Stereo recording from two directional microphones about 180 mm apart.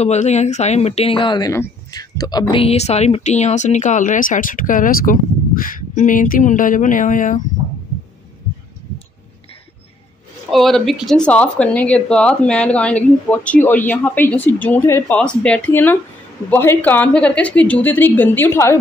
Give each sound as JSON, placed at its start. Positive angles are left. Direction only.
{"t": 0.0, "sound": "speech", "side_deg": 40}
{"t": 10.5, "sound": "speech", "side_deg": 0}